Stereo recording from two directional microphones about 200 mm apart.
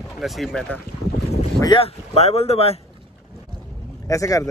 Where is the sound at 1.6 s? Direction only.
25° left (ahead or behind).